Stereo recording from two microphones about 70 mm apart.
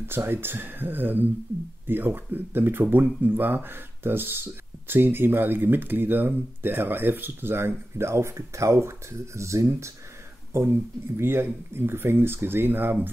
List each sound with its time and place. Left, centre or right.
0.0 s speech: right